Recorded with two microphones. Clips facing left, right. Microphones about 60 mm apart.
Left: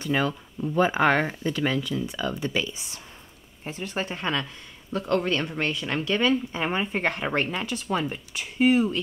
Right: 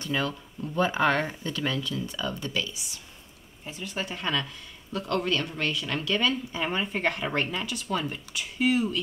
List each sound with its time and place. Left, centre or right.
0.2 s speech: left